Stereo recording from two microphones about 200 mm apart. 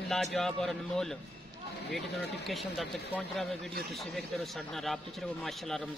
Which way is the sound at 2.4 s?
Centre (ahead or behind).